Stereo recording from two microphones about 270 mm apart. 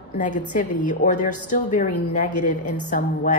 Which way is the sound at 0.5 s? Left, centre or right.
Left.